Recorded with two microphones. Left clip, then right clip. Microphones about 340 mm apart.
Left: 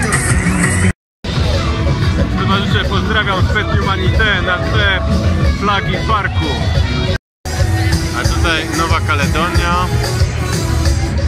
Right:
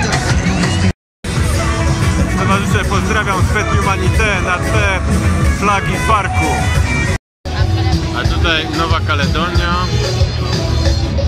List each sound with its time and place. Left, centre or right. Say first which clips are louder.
0.0 s music: even; right
2.4 s speech: even; centre
8.5 s speech: right 1 dB; centre